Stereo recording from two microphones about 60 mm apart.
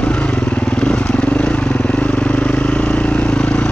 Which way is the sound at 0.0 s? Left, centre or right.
Left.